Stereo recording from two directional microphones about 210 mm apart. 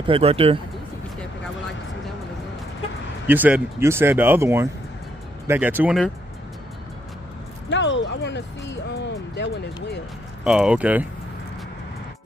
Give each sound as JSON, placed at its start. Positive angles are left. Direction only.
{"t": 0.0, "sound": "speech", "side_deg": -25}
{"t": 3.3, "sound": "speech", "side_deg": -10}
{"t": 7.7, "sound": "speech", "side_deg": 60}
{"t": 10.4, "sound": "speech", "side_deg": -5}